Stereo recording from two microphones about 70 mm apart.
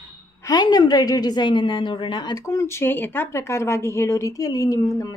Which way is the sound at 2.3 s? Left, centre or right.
Left.